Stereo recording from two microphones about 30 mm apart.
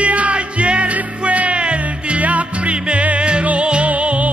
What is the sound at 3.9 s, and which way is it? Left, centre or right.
Music, right.